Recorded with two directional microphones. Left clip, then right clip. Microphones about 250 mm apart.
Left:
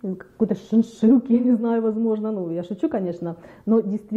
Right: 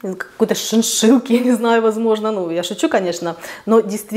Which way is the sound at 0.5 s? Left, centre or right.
Centre.